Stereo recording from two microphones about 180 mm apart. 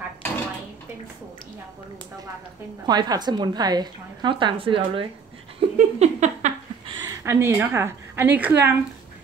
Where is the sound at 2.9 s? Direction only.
25° right (ahead or behind).